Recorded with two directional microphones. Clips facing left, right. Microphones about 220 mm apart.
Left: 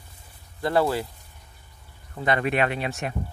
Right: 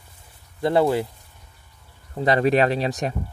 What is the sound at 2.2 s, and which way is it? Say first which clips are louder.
Speech: right 5 dB; 35° right (ahead or behind).